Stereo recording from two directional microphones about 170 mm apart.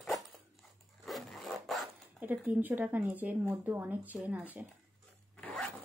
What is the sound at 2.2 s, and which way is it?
Speech, 10° right (ahead or behind).